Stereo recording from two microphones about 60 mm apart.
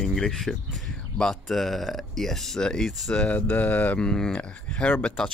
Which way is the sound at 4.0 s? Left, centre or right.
Centre.